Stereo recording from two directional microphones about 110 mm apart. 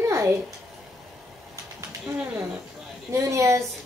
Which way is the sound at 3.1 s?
25° right (ahead or behind).